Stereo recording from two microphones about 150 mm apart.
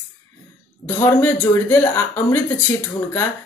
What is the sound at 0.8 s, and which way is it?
Speech, 15° left (ahead or behind).